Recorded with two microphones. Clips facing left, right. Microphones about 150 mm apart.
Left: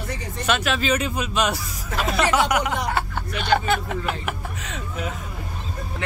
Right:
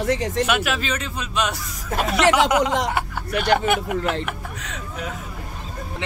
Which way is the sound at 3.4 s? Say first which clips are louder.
Right 2 dB; 15° right (ahead or behind).